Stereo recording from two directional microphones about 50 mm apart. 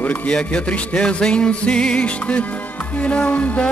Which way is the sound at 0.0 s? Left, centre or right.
Left.